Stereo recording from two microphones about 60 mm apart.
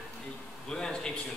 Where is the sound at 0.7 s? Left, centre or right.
Centre.